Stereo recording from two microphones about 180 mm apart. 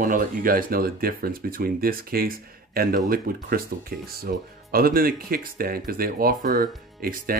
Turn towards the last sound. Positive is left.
turn(degrees=-55)  # may be behind; listen again after turning